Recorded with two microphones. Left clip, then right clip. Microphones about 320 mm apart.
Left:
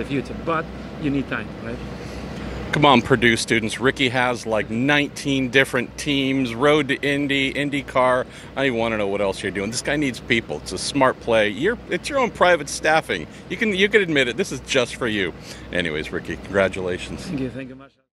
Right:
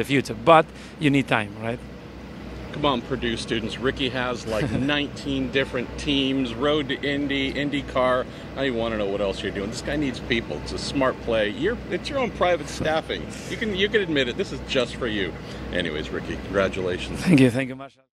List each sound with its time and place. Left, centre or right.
0.0 s speech: right
2.7 s speech: left
6.0 s speech: left